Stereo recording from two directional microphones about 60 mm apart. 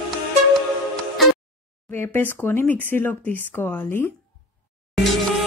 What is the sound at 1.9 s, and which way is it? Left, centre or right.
Speech, left.